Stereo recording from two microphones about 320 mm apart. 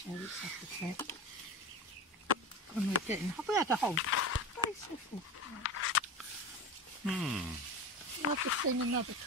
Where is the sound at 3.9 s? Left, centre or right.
Left.